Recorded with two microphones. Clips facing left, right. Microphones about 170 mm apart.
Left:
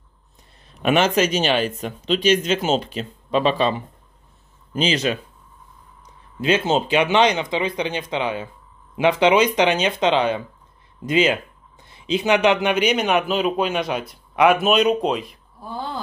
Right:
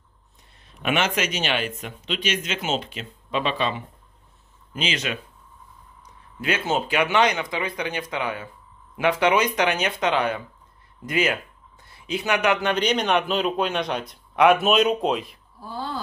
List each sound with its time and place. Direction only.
0.7 s speech: 35° left (ahead or behind)
6.4 s speech: 25° left (ahead or behind); by 15.3 s centre (ahead or behind)